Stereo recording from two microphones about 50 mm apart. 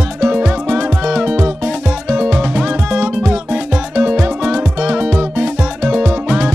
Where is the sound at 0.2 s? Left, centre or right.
Right.